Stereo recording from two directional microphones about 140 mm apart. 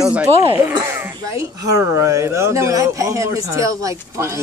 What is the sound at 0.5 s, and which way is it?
Speech, 15° right (ahead or behind).